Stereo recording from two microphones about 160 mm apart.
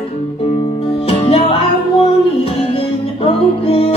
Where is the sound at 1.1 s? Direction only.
35° left (ahead or behind).